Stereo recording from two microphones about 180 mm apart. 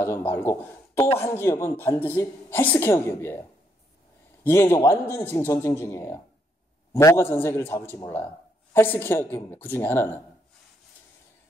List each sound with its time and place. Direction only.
0.0 s a man's voice: 15° left (ahead or behind)